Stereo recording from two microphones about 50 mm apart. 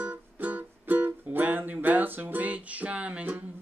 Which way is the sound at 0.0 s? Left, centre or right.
Right.